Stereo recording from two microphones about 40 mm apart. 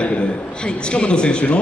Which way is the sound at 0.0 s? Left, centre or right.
Left.